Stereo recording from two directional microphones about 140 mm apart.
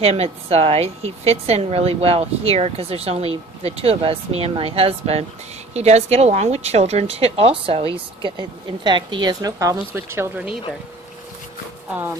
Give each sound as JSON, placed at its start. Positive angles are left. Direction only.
{"t": 0.0, "sound": "a woman's voice", "side_deg": -45}